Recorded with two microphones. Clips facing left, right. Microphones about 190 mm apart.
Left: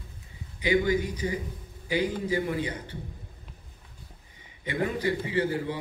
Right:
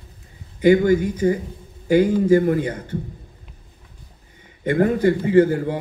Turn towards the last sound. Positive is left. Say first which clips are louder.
# right 12 dB
turn(degrees=-50)  # may be behind; listen again after turning